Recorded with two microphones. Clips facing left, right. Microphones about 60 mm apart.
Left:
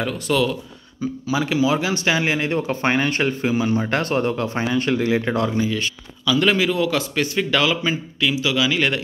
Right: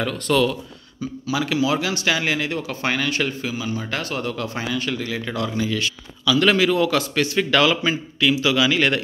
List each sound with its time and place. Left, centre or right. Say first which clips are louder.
0.0 s speech: right 1 dB; centre
1.2 s speech: left 1 dB; left
3.5 s speech: left 6 dB; left
5.6 s speech: left 1 dB; left
6.7 s speech: right 1 dB; centre